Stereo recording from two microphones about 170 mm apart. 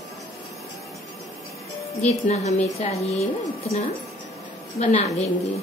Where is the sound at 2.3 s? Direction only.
40° left (ahead or behind).